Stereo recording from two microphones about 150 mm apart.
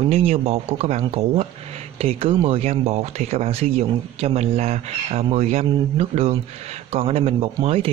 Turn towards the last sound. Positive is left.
turn(degrees=-40)  # may be behind; listen again after turning